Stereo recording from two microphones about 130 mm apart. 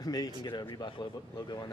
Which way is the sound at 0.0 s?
30° left (ahead or behind).